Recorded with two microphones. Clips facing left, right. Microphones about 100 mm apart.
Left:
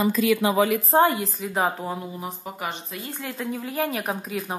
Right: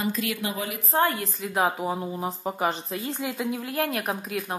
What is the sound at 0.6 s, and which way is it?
Speech, 90° left.